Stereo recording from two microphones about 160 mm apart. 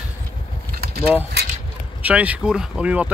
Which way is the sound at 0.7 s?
75° right (ahead or behind).